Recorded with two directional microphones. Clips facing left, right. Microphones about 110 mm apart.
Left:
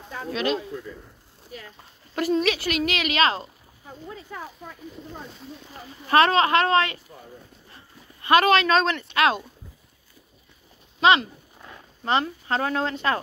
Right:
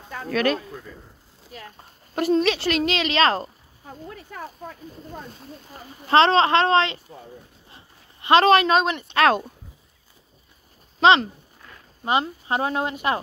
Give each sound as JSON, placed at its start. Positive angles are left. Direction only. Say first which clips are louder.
{"t": 0.3, "sound": "speech", "louder": "right 3 dB", "side_deg": -50}
{"t": 2.3, "sound": "a woman's voice", "louder": "right 3 dB", "side_deg": -30}
{"t": 5.7, "sound": "speech", "louder": "right 2 dB", "side_deg": -30}
{"t": 7.7, "sound": "a sound", "louder": "left 1 dB", "side_deg": -25}
{"t": 8.7, "sound": "speech", "louder": "right 1 dB", "side_deg": -15}
{"t": 9.1, "sound": "a woman's voice", "louder": "right 4 dB", "side_deg": -40}
{"t": 11.0, "sound": "speech", "louder": "right 2 dB", "side_deg": -35}
{"t": 12.0, "sound": "speech", "louder": "right 1 dB", "side_deg": -15}